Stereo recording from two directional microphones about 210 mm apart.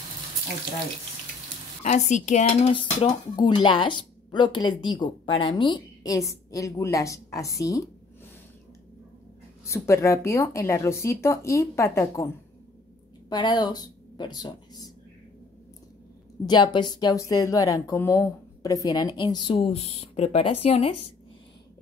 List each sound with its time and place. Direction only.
1.8 s speech: 35° left (ahead or behind); by 7.9 s 15° left (ahead or behind)
9.7 s speech: 15° left (ahead or behind)
13.3 s speech: 20° left (ahead or behind)
16.4 s speech: 20° left (ahead or behind)